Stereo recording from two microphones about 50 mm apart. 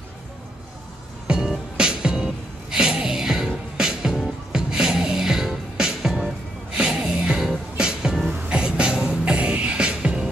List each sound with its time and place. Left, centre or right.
1.2 s music: centre